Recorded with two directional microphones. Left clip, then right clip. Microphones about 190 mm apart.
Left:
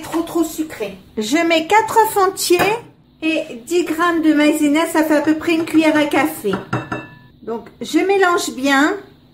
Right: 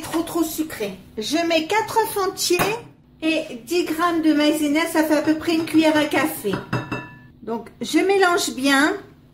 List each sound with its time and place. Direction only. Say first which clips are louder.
0.1 s speech: left 4 dB; 10° right (ahead or behind)
1.1 s a woman's voice: left 5 dB; 20° left (ahead or behind)
3.2 s a woman's voice: left 3 dB; 10° left (ahead or behind)
7.4 s speech: left 2 dB; centre (ahead or behind)